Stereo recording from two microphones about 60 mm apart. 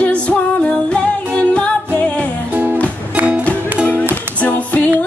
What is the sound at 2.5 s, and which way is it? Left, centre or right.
Music, right.